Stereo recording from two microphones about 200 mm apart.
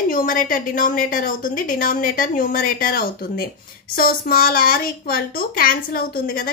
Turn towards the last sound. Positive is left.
turn(degrees=45)  # may be behind; listen again after turning